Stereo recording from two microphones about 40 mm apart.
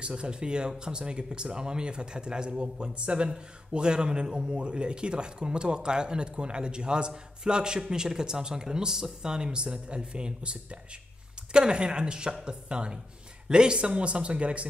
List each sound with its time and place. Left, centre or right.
0.0 s speech: right